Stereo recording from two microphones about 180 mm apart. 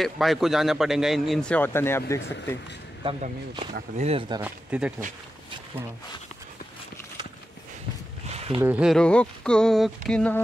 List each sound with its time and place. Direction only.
0.0 s a man's voice: centre (ahead or behind)
3.0 s speech: 30° right (ahead or behind)
4.4 s speech: 10° right (ahead or behind)
8.3 s a sound: 35° right (ahead or behind)
8.5 s speech: 10° right (ahead or behind)
8.9 s a man's voice: 5° left (ahead or behind)